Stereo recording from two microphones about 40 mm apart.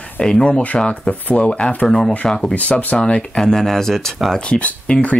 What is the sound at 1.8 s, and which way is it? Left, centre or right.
Speech, centre.